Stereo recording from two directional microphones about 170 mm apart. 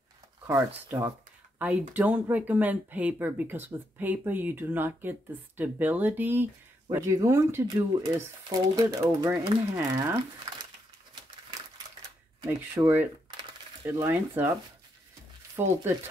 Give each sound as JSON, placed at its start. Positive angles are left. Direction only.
{"t": 0.7, "sound": "speech", "side_deg": -15}
{"t": 12.4, "sound": "speech", "side_deg": -10}